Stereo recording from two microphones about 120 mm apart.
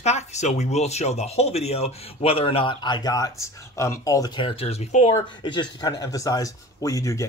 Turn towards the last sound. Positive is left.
turn(degrees=25)  # may be behind; listen again after turning